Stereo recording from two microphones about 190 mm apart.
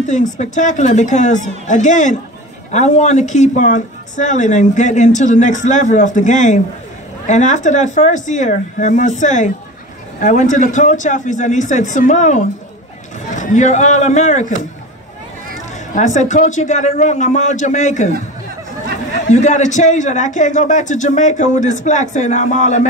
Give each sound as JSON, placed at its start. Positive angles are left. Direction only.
{"t": 0.0, "sound": "a woman's voice", "side_deg": 40}
{"t": 15.9, "sound": "a woman's voice", "side_deg": 40}
{"t": 19.2, "sound": "a woman's voice", "side_deg": 40}